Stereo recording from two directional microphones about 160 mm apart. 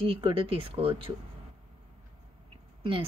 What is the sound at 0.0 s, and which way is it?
Speech, 35° right (ahead or behind).